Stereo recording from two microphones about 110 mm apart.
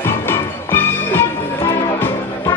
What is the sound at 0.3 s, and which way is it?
Music, 20° left (ahead or behind).